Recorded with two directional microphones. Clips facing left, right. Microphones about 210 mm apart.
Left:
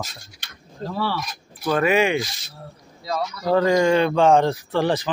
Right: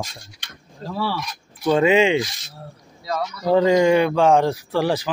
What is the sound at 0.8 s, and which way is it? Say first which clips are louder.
Speech: even; 5° right (ahead or behind).